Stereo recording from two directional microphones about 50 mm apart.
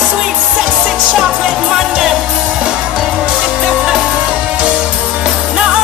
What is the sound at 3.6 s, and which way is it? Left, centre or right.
Music, centre.